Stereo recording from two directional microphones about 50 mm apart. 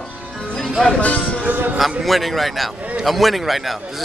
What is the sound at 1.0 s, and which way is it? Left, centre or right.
Speech, left.